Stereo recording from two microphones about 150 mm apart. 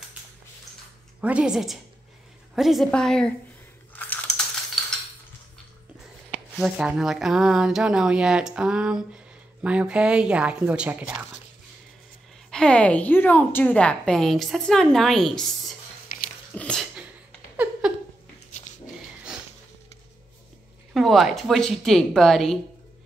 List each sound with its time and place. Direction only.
1.2 s a woman's voice: 5° right (ahead or behind)
3.9 s a sound: 10° left (ahead or behind)
6.6 s speech: 5° right (ahead or behind)
12.4 s a woman's voice: 5° left (ahead or behind)
16.1 s biting: 70° left (ahead or behind)
16.5 s a sound: 5° left (ahead or behind)
20.9 s a woman's voice: centre (ahead or behind)